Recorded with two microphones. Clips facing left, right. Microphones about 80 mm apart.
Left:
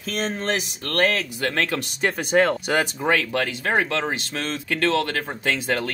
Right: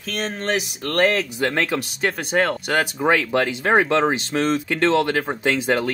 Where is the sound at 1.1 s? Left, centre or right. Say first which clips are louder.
Right 3 dB; centre.